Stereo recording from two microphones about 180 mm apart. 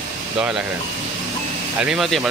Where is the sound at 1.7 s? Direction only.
5° right (ahead or behind).